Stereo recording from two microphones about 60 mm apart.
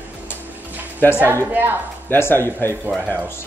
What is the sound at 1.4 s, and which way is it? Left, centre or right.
Speech, right.